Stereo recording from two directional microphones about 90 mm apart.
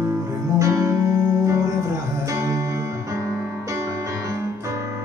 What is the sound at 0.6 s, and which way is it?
Music, 40° right (ahead or behind).